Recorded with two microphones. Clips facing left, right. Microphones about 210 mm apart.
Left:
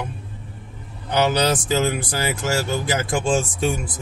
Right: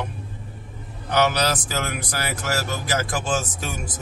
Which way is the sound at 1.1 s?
25° left (ahead or behind).